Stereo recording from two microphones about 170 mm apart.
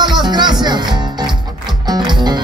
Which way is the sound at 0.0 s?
25° right (ahead or behind).